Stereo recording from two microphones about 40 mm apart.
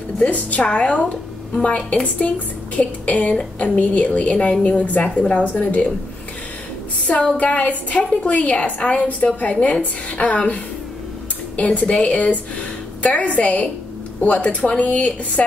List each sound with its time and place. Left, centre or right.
0.2 s a woman's voice: left
2.1 s a woman's voice: left
7.3 s a woman's voice: left